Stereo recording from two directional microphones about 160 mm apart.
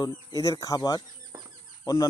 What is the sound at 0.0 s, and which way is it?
Speech, 20° left (ahead or behind).